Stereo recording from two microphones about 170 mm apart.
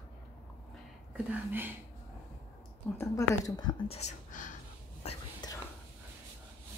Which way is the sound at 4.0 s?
50° left (ahead or behind).